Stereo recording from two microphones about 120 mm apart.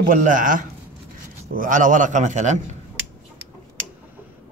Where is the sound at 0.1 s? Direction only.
90° right.